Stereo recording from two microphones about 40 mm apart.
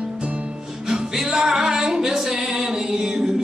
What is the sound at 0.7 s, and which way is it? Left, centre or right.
Music, centre.